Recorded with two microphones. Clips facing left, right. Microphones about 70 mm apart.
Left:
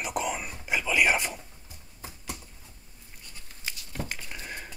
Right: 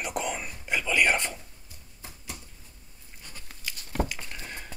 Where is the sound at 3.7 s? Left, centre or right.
Right.